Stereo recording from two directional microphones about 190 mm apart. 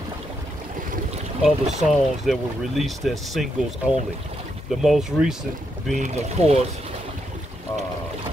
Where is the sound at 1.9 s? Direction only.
Centre (ahead or behind).